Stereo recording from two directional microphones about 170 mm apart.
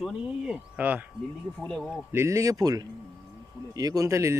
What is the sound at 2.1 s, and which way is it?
Speech, 15° right (ahead or behind).